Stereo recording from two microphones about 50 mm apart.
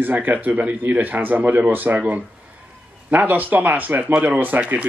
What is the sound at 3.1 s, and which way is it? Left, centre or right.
Speech, right.